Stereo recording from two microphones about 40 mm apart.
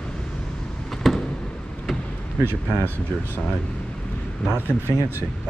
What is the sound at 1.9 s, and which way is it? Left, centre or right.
Vehicle, centre.